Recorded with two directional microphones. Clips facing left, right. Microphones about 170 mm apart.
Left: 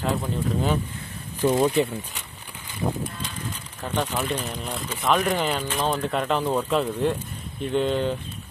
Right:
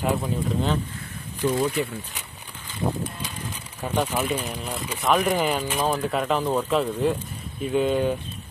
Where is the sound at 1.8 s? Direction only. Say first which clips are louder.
Left 4 dB; 20° left (ahead or behind).